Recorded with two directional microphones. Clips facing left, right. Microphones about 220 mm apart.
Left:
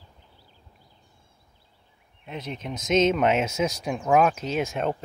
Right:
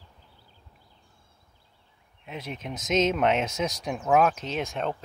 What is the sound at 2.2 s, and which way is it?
Speech, 5° right (ahead or behind).